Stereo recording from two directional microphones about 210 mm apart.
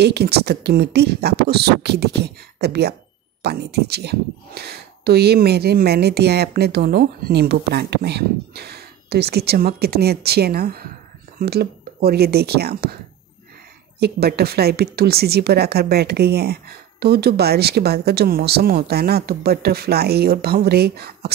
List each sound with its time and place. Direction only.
0.0 s speech: 50° right (ahead or behind)